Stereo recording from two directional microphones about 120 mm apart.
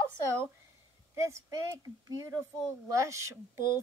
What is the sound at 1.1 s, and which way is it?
Speech, 25° right (ahead or behind).